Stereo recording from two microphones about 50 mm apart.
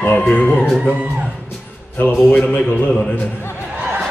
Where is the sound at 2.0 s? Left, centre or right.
Left.